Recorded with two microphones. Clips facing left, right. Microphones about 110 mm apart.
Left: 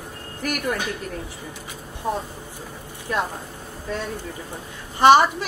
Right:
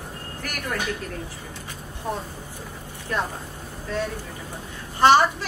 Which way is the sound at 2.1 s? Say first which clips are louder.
Left 4 dB; 10° left (ahead or behind).